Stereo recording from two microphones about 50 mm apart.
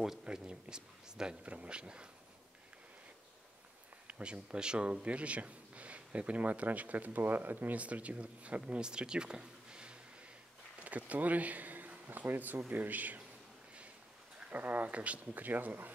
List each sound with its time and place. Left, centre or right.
0.0 s a man's voice: centre
4.1 s speech: centre; by 7.7 s right
7.7 s speech: right
10.8 s speech: right
14.5 s speech: right